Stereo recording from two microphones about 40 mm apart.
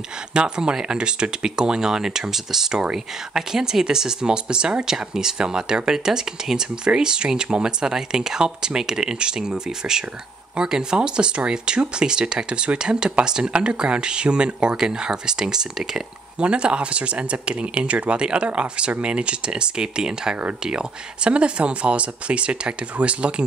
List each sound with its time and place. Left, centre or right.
0.3 s speech: right
16.3 s speech: right